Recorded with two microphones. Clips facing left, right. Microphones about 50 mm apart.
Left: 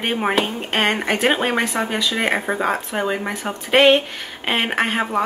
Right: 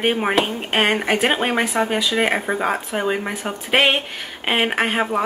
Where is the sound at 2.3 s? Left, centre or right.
Centre.